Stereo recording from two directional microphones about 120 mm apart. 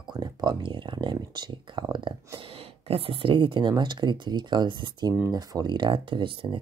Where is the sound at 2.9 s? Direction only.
50° right (ahead or behind).